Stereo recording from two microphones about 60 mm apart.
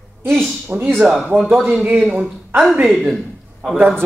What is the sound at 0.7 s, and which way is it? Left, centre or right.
Speech, right.